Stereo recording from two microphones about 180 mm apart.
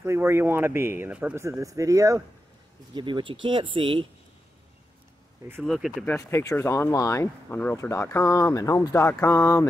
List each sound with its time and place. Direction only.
0.0 s speech: 15° right (ahead or behind)
5.6 s speech: centre (ahead or behind)
6.0 s speech: 15° left (ahead or behind)